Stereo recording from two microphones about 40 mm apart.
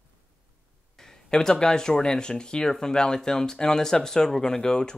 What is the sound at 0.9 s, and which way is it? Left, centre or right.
Speech, centre.